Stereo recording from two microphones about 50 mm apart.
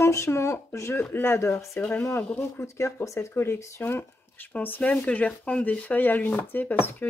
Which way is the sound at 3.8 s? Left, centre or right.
Left.